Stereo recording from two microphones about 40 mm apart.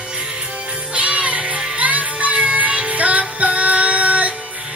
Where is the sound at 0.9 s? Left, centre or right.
Right.